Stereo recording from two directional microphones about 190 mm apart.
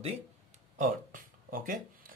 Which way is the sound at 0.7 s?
45° right (ahead or behind).